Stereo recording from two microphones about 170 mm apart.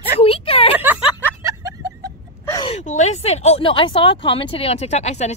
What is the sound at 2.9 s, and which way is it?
Speech, 40° left (ahead or behind).